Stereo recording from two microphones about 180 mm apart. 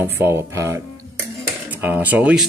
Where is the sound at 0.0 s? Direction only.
10° right (ahead or behind).